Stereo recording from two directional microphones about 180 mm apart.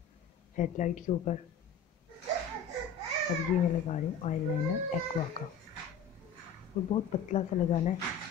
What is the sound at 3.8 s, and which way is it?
Speech, 40° left (ahead or behind).